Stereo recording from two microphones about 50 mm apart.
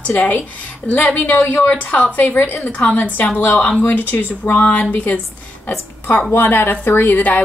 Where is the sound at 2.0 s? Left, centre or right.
Left.